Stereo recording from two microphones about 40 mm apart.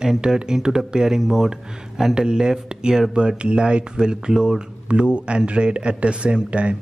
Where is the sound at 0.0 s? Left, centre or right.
Centre.